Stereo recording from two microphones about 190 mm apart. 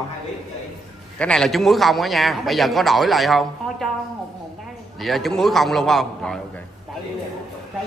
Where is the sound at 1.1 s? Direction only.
5° left (ahead or behind).